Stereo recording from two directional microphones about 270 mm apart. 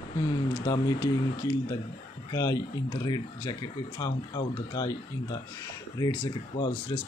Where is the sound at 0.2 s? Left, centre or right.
Centre.